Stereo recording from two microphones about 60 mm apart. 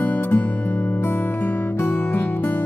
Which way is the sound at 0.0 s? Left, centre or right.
Left.